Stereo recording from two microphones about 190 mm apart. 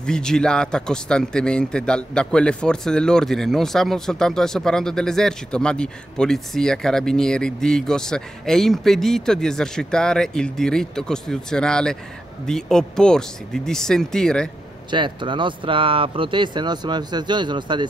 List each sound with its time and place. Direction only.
0.0 s speech: 5° left (ahead or behind)
14.9 s speech: 25° right (ahead or behind)